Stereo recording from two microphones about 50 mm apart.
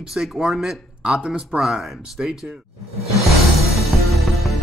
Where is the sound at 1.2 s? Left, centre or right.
Right.